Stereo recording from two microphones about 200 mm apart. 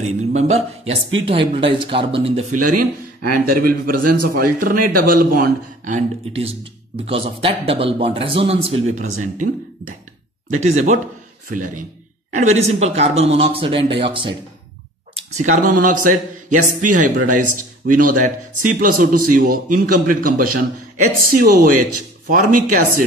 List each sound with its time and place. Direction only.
0.0 s speech: 35° right (ahead or behind)
2.5 s speech: 40° right (ahead or behind)
10.5 s speech: 35° right (ahead or behind)
12.3 s speech: 35° right (ahead or behind)
15.1 s a man's voice: 35° right (ahead or behind)